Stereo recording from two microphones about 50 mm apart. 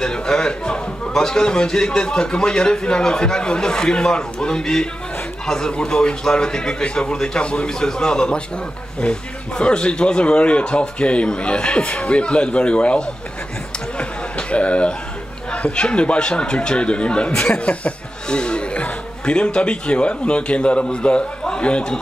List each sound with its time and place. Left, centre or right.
0.0 s a man's voice: centre
14.5 s a sound: left
15.5 s speech: left